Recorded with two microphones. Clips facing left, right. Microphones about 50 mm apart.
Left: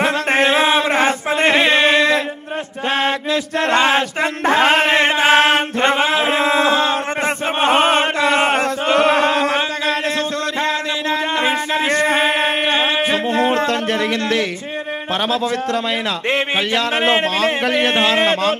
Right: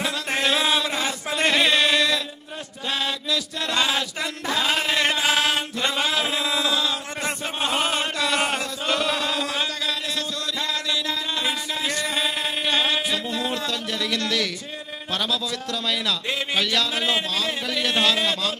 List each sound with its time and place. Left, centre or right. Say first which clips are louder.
0.0 s chant: left 9 dB; left
1.4 s chant: left 5 dB; left
2.9 s a sound: left 8 dB; left
12.7 s a sound: left 6 dB; left
14.1 s a man's voice: left 6 dB; left
15.2 s a man's voice: left 11 dB; left
16.5 s a man's voice: left 6 dB; left
17.0 s a man's voice: left 9 dB; left